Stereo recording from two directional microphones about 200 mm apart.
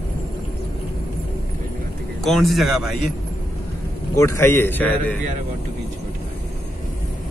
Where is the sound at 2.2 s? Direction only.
Centre (ahead or behind).